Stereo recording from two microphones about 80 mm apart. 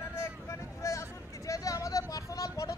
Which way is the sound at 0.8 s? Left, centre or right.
Left.